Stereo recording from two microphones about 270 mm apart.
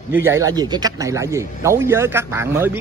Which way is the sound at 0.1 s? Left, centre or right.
Centre.